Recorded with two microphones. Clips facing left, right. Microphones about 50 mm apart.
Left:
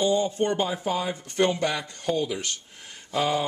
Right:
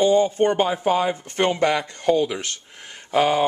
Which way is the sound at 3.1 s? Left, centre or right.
Right.